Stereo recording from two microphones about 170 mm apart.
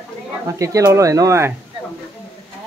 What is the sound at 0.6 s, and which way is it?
Speech, 20° right (ahead or behind).